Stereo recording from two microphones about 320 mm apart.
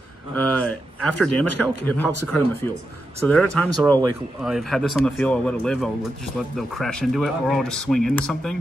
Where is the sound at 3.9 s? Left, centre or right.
Centre.